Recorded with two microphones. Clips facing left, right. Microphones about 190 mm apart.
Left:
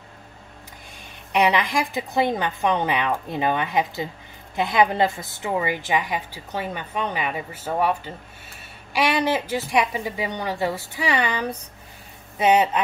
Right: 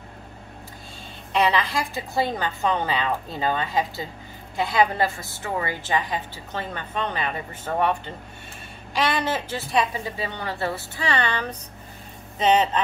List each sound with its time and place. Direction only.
1.3 s a woman's voice: 15° left (ahead or behind)